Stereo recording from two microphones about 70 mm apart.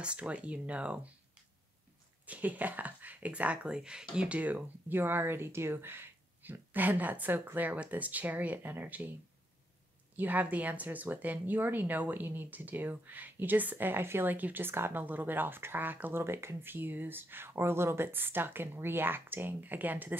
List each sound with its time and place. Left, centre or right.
0.0 s speech: centre
2.2 s speech: right
10.1 s speech: right